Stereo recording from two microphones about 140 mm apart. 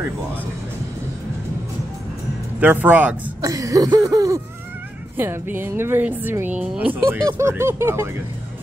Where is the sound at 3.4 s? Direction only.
25° right (ahead or behind).